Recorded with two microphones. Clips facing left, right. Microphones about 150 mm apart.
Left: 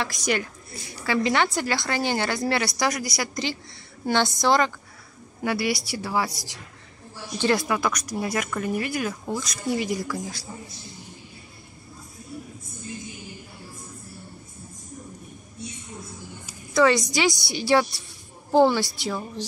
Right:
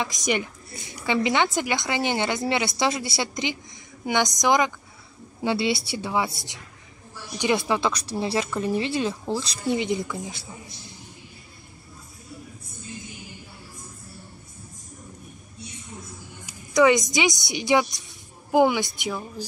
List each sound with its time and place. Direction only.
0.0 s a woman's voice: 20° right (ahead or behind)
16.7 s a woman's voice: 20° right (ahead or behind)